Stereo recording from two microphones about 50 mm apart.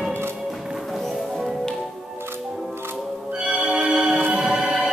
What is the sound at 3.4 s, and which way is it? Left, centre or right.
Music, centre.